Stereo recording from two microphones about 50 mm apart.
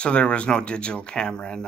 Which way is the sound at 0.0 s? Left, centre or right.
Left.